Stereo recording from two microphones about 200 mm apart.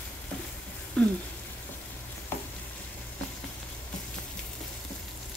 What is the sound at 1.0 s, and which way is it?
Speech, 5° left (ahead or behind).